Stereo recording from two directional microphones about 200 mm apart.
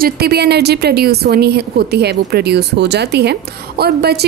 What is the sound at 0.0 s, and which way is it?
A woman's voice, 50° right (ahead or behind).